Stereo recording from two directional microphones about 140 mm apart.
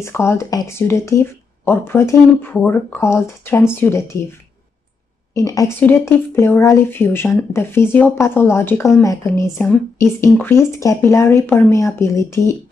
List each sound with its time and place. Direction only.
0.0 s speech: 20° left (ahead or behind)
5.3 s a woman's voice: 25° left (ahead or behind)